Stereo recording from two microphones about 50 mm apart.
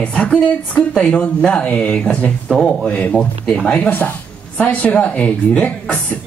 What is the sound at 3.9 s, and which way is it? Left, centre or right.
Speech, left.